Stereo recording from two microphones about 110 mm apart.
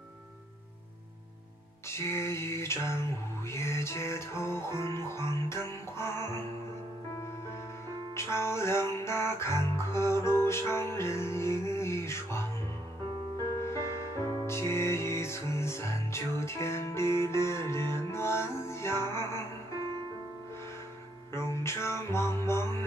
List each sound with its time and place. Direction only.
1.9 s a sound: 25° left (ahead or behind)
8.1 s music: 25° left (ahead or behind)
13.6 s music: 25° left (ahead or behind)
21.3 s music: 25° left (ahead or behind)